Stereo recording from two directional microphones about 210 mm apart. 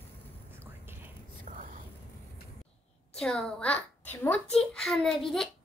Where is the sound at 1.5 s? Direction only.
40° right (ahead or behind).